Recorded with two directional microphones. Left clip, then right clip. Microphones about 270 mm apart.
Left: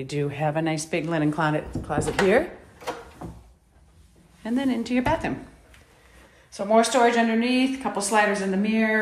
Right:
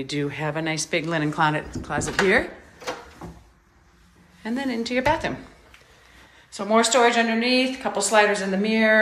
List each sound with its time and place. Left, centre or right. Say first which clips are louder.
0.0 s a woman's voice: left 1 dB; centre
4.4 s a woman's voice: left 1 dB; centre
6.5 s a woman's voice: right 1 dB; centre